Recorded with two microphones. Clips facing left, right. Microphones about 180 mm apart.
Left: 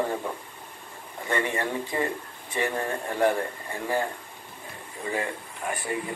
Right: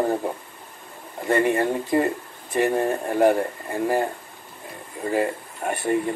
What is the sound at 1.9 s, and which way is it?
Speech, 40° right (ahead or behind).